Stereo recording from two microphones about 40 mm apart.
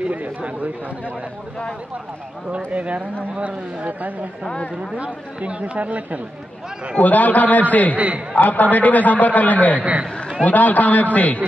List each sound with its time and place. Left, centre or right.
0.0 s speech: right
2.5 s speech: right
4.9 s speech: right
7.0 s a man's voice: left
7.9 s speech: right
8.4 s a man's voice: left
9.8 s speech: right
10.4 s a man's voice: left